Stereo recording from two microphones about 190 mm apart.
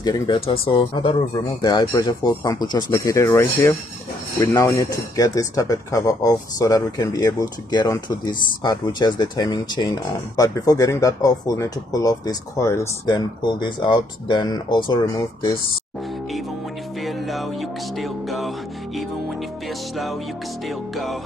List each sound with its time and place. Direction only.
0.0 s speech: 25° left (ahead or behind)
17.0 s music: centre (ahead or behind)
20.6 s music: centre (ahead or behind)